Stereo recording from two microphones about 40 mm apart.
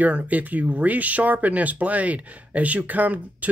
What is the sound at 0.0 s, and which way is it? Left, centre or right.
Speech, right.